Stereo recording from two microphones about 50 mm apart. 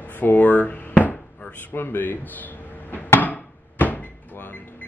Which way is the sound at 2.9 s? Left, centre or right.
Left.